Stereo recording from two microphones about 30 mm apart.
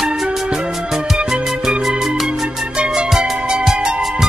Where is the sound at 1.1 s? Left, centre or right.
Right.